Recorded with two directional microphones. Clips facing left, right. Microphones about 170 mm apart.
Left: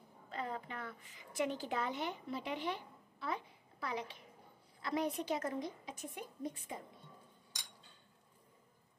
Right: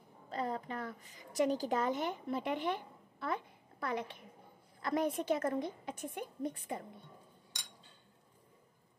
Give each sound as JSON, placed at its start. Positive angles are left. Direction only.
{"t": 0.3, "sound": "a woman's voice", "side_deg": -40}